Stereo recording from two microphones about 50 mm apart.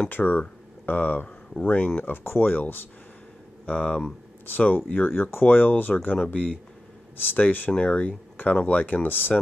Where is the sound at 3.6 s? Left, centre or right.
Left.